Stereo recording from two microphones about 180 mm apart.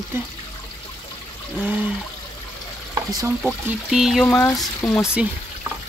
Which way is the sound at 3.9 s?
Centre (ahead or behind).